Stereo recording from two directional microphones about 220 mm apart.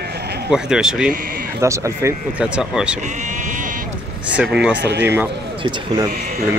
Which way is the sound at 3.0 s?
35° right (ahead or behind).